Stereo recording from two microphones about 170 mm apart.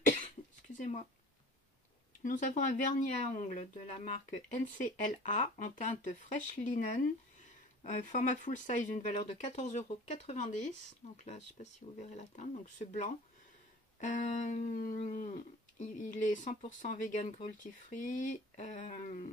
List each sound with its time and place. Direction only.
0.0 s a sound: 50° left (ahead or behind)
0.7 s speech: 45° left (ahead or behind)
2.2 s speech: 45° left (ahead or behind)